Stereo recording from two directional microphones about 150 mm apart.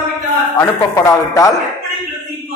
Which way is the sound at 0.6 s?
20° left (ahead or behind).